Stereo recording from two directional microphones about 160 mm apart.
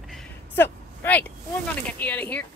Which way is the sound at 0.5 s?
10° left (ahead or behind).